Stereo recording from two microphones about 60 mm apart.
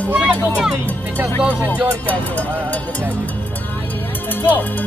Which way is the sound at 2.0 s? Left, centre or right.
Left.